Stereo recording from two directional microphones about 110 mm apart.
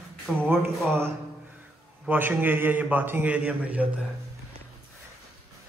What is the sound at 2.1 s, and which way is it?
A man's voice, 15° right (ahead or behind).